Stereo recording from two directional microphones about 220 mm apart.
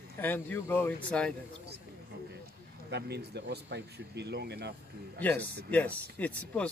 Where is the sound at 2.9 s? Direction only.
50° right (ahead or behind).